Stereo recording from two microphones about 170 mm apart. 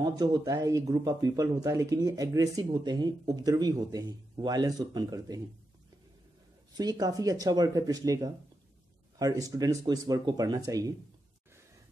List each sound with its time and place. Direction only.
0.0 s speech: 20° right (ahead or behind)
6.8 s speech: 20° right (ahead or behind)